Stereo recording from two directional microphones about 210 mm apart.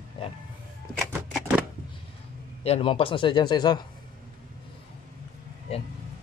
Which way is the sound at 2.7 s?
25° left (ahead or behind).